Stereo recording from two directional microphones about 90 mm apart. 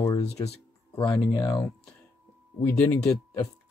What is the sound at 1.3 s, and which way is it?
Speech, 55° left (ahead or behind).